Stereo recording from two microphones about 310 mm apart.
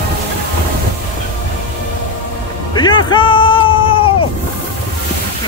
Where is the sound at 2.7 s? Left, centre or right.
Centre.